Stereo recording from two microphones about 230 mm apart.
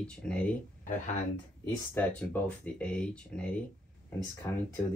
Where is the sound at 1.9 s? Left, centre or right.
Centre.